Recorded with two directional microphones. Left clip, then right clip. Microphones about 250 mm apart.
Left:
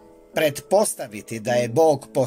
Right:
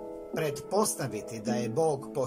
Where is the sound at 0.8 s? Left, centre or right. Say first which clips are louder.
Left 7 dB; left.